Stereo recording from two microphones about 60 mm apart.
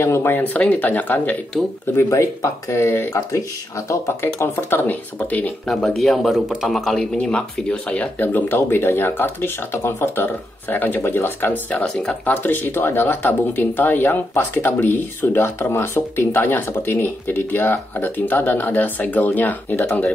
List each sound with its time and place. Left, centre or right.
0.0 s speech: left
0.4 s speech: left
2.0 s speech: left
2.7 s speech: left
3.1 s speech: left
4.4 s speech: left
5.9 s speech: centre
7.0 s speech: centre
8.2 s speech: left
11.8 s speech: centre
12.3 s speech: left